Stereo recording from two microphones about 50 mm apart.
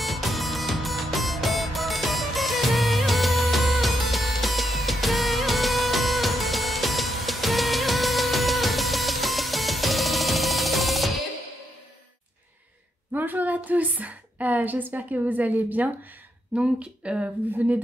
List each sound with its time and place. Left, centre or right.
0.0 s music: centre
13.1 s a sound: right
13.7 s a woman's voice: right
16.5 s a woman's voice: right